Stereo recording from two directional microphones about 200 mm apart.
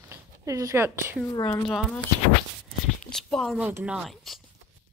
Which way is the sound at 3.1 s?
Centre (ahead or behind).